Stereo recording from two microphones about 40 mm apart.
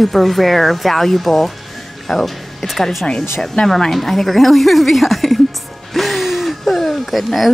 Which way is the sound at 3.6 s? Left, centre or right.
Centre.